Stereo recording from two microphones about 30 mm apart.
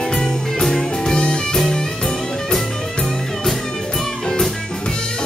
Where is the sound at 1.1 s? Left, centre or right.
Left.